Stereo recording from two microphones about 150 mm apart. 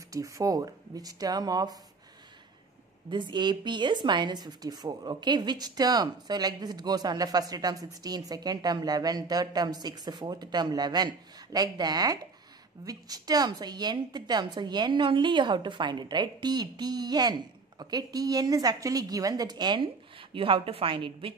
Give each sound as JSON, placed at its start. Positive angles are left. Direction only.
{"t": 0.1, "sound": "a woman's voice", "side_deg": -20}
{"t": 3.1, "sound": "a woman's voice", "side_deg": -30}